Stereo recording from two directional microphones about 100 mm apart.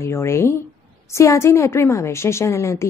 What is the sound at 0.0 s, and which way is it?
A woman's voice, 25° left (ahead or behind).